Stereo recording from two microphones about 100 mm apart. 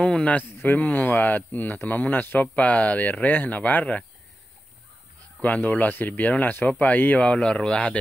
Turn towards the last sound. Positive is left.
turn(degrees=10)  # may be behind; listen again after turning